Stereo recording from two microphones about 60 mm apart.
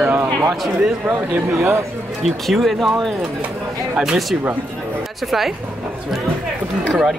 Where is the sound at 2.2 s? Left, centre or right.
Centre.